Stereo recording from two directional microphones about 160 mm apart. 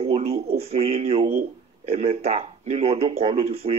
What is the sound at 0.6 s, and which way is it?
A man's voice, 40° right (ahead or behind).